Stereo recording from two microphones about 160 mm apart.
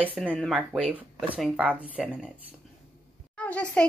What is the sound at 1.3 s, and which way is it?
Speech, 10° right (ahead or behind).